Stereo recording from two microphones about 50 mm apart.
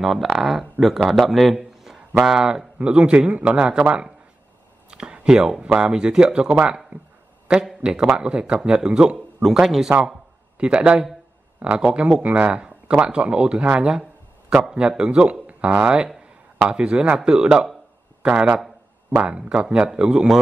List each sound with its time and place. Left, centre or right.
0.0 s a man's voice: centre
2.9 s speech: right
4.9 s a sound: centre
5.7 s speech: centre
7.8 s speech: centre
9.4 s speech: centre
10.6 s speech: centre